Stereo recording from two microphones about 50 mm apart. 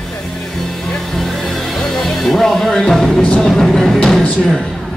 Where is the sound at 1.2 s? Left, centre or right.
Centre.